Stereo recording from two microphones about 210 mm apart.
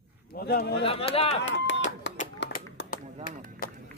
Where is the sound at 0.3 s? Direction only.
45° left (ahead or behind).